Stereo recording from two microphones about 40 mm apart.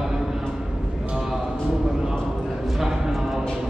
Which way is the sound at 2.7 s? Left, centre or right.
Centre.